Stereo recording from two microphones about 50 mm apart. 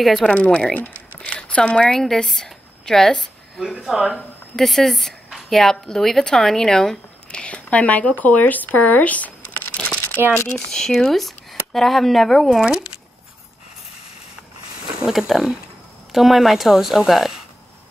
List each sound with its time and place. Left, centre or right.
0.0 s speech: centre
0.3 s speech: left
0.7 s typing: left
2.0 s a woman's voice: centre
3.8 s speech: centre
4.6 s a woman's voice: centre
7.2 s speech: left
9.8 s crumpling: centre
10.3 s speech: left
10.7 s speech: centre
12.6 s speech: centre
15.0 s speech: centre